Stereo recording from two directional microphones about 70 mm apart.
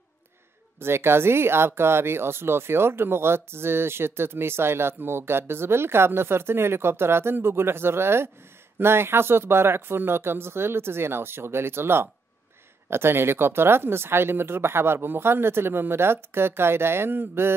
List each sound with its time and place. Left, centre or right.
0.7 s speech: right